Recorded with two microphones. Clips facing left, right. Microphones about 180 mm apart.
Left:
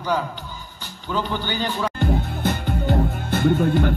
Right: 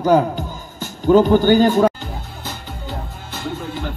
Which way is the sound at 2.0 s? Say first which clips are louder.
Left 9 dB; 60° left (ahead or behind).